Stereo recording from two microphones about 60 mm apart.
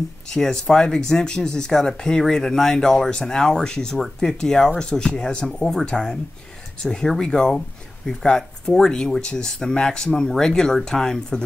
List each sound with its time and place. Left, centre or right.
0.3 s speech: centre